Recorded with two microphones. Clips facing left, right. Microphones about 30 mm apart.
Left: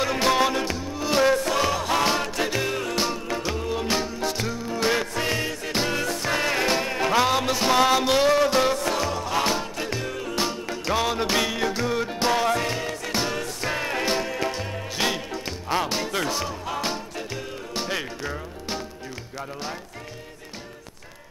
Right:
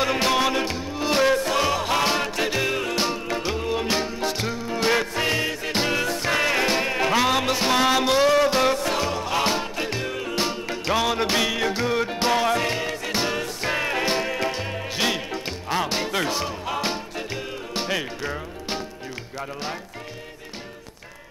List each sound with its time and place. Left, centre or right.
0.0 s music: centre